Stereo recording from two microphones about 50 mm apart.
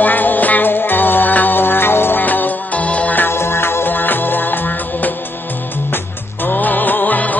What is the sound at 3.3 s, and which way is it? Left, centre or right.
Music, left.